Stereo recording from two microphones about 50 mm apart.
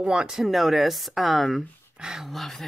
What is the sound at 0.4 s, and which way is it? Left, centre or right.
Speech, centre.